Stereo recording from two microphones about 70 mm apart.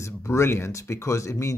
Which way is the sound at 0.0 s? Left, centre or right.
Left.